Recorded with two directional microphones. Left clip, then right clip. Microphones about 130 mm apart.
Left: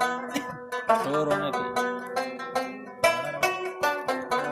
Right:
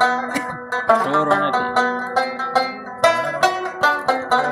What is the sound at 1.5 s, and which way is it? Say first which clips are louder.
Music: right 9 dB; 25° left (ahead or behind).